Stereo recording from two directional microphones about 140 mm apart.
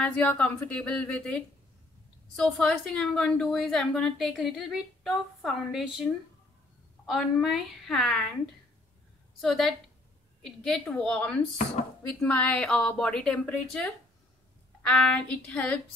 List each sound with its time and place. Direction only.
0.0 s speech: 10° left (ahead or behind)
2.3 s a woman's voice: 5° left (ahead or behind)
7.1 s a woman's voice: centre (ahead or behind)
9.4 s a woman's voice: centre (ahead or behind)